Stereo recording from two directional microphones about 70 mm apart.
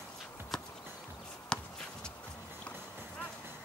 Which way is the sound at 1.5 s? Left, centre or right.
Centre.